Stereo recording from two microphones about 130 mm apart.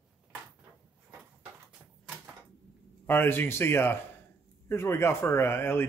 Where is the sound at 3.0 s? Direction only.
15° left (ahead or behind).